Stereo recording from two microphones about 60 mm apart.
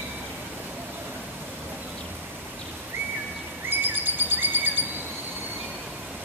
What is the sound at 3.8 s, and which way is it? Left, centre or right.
Bird, right.